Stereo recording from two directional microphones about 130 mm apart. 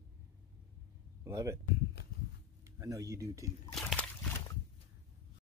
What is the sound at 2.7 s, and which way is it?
Speech, 25° right (ahead or behind).